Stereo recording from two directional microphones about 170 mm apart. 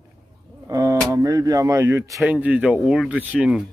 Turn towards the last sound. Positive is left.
turn(degrees=-5)  # may be behind; listen again after turning